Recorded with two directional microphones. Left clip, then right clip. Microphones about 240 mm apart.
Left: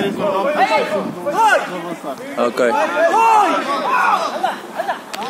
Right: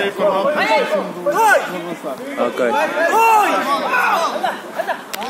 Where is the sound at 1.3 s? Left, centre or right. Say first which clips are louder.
Even; right.